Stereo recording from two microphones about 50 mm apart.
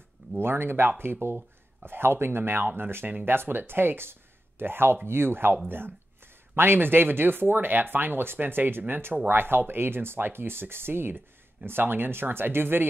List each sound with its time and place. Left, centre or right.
0.4 s speech: right